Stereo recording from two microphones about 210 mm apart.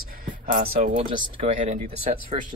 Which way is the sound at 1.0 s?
25° right (ahead or behind).